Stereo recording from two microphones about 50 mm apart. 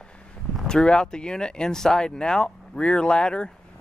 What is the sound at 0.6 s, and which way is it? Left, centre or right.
Speech, centre.